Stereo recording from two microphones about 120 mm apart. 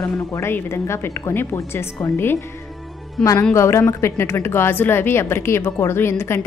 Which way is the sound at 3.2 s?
5° left (ahead or behind).